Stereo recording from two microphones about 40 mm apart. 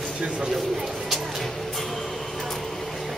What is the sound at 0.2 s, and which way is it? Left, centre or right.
Speech, centre.